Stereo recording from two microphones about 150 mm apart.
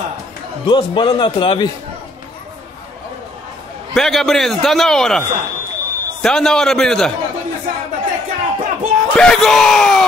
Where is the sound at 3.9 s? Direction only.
Centre (ahead or behind).